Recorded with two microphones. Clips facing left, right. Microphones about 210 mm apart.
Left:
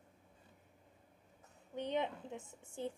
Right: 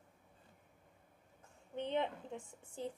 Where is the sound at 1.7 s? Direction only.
15° left (ahead or behind).